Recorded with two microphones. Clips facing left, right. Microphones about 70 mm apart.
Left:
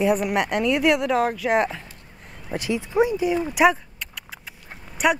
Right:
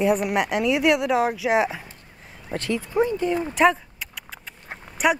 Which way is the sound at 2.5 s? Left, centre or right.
Centre.